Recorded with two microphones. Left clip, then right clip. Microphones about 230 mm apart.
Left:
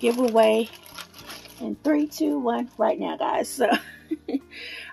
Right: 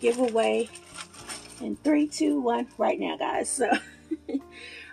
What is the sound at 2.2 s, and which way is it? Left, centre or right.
A woman's voice, left.